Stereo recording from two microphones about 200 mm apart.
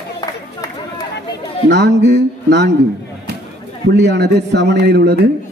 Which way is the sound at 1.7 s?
60° right (ahead or behind).